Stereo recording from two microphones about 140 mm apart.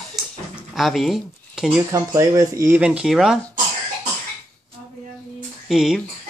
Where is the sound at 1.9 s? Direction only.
20° right (ahead or behind); by 3.4 s 5° right (ahead or behind).